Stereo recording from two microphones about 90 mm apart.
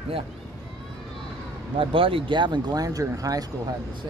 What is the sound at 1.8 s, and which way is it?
Speech, 80° right.